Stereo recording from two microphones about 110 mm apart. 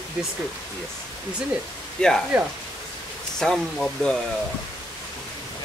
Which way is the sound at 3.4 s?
5° left (ahead or behind).